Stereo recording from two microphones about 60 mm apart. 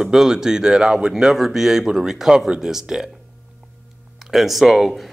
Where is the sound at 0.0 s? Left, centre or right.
Centre.